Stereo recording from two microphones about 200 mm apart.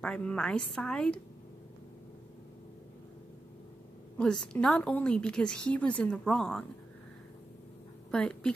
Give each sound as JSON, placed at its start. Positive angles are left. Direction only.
{"t": 0.0, "sound": "a woman's voice", "side_deg": 5}
{"t": 4.2, "sound": "a woman's voice", "side_deg": 5}
{"t": 8.1, "sound": "a woman's voice", "side_deg": 5}